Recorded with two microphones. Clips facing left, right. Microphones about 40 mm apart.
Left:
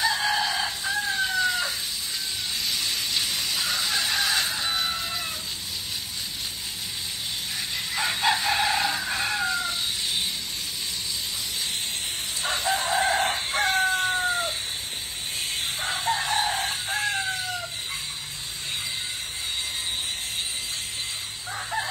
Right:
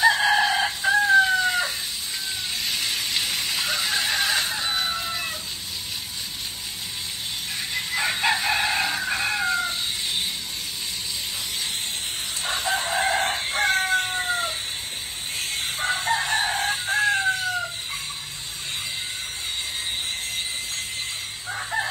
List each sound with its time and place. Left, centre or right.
0.0 s chicken: right
7.7 s chicken: right
8.8 s chicken: centre
9.1 s a sound: right
12.4 s chicken: right
13.6 s chicken: right
14.1 s cat: right
15.5 s chicken: right
21.7 s chicken: right